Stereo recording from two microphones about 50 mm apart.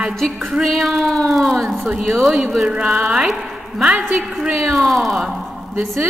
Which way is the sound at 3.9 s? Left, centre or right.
Right.